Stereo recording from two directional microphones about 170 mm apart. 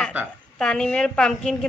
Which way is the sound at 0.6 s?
5° left (ahead or behind).